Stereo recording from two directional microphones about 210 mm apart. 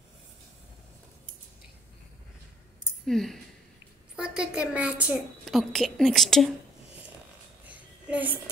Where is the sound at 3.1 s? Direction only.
Centre (ahead or behind).